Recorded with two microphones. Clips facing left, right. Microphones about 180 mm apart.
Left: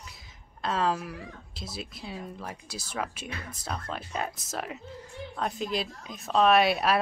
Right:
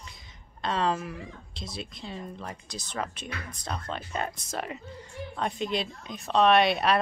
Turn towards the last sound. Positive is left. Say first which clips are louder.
# right 1 dB
turn(degrees=5)  # may be behind; listen again after turning